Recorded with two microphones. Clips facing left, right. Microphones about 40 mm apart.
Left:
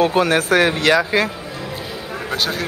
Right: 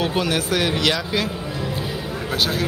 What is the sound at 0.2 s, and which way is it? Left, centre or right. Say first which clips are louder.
Speech: left 6 dB; left.